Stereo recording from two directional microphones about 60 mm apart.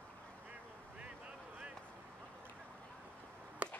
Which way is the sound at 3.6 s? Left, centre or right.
Right.